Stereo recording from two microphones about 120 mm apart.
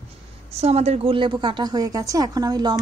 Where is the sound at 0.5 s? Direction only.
60° right (ahead or behind).